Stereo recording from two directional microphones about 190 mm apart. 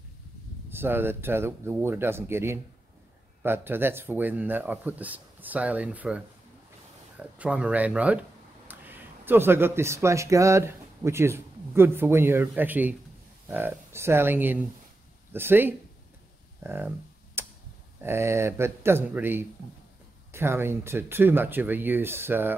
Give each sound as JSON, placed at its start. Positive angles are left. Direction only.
{"t": 0.7, "sound": "speech", "side_deg": -10}
{"t": 17.4, "sound": "tick", "side_deg": -10}
{"t": 18.0, "sound": "speech", "side_deg": -15}